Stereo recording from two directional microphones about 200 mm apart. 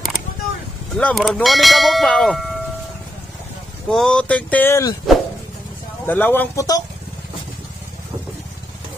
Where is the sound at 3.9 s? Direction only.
5° left (ahead or behind).